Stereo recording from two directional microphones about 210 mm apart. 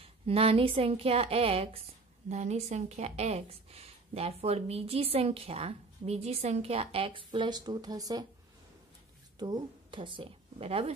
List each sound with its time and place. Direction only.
0.0 s speech: 25° right (ahead or behind)
9.4 s a woman's voice: 20° right (ahead or behind)